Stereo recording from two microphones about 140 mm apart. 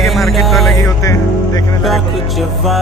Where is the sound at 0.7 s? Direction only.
20° left (ahead or behind).